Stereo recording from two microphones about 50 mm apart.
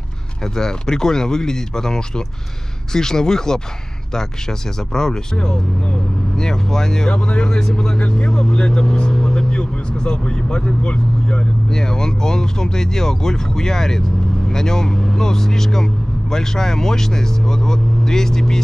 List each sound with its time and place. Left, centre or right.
0.4 s speech: centre